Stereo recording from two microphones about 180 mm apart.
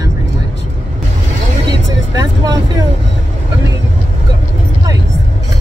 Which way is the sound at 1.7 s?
20° right (ahead or behind).